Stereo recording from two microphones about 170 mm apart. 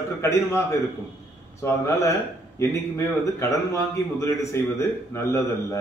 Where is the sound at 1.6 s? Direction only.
15° left (ahead or behind).